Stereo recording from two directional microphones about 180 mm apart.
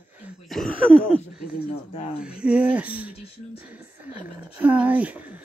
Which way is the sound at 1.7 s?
35° left (ahead or behind).